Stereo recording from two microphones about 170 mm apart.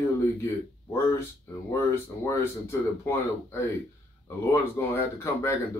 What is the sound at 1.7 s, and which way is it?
Speech, 15° left (ahead or behind).